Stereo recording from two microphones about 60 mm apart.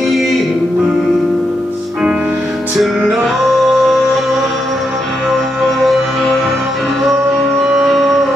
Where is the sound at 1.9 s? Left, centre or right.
Centre.